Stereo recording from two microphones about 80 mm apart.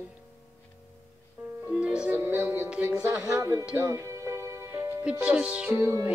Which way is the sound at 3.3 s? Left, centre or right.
Right.